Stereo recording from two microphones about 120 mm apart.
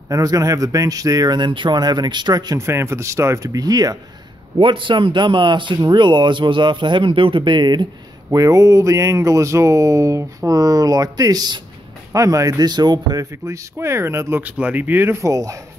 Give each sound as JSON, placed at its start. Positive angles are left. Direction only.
{"t": 0.1, "sound": "speech", "side_deg": -30}
{"t": 2.6, "sound": "speech", "side_deg": -20}
{"t": 4.6, "sound": "speech", "side_deg": -45}
{"t": 8.3, "sound": "speech", "side_deg": -25}